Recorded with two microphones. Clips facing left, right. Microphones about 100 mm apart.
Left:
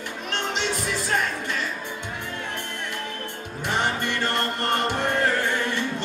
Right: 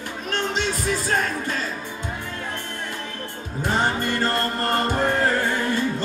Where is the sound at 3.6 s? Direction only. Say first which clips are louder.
Right 3 dB; 40° right (ahead or behind).